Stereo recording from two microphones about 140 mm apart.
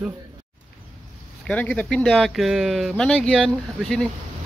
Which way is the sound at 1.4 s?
10° left (ahead or behind).